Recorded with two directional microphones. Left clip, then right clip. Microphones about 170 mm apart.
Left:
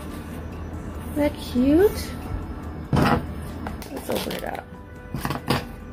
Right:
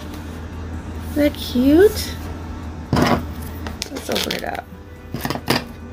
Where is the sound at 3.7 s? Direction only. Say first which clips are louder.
Right 6 dB; 15° right (ahead or behind).